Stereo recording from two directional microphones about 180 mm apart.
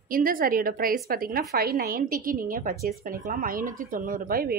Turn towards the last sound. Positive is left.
turn(degrees=-55)  # may be behind; listen again after turning